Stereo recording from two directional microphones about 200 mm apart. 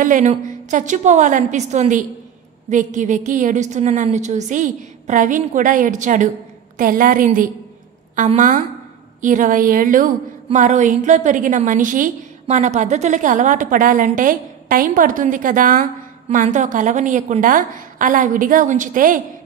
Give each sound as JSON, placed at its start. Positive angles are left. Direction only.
{"t": 0.0, "sound": "a woman's voice", "side_deg": -40}